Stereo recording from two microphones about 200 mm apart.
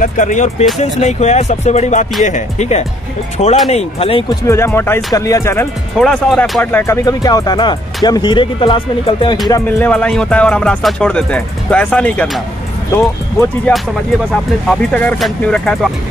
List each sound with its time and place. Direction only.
0.0 s speech: 40° left (ahead or behind)
4.5 s speech: 15° left (ahead or behind)
5.9 s speech: 5° left (ahead or behind); by 9.4 s 25° left (ahead or behind)
9.5 s music: 10° left (ahead or behind)
12.9 s speech: 10° left (ahead or behind)
14.3 s music: 5° left (ahead or behind)